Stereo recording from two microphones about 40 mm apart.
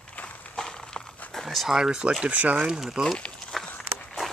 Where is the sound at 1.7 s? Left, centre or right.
Centre.